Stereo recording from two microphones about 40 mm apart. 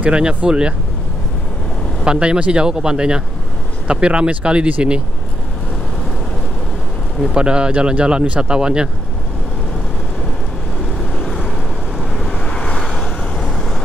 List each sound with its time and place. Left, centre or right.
0.0 s speech: right
2.0 s speech: right
7.2 s speech: right
12.3 s vehicle: centre